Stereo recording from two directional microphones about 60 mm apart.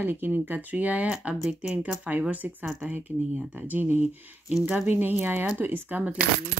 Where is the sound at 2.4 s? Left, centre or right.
Right.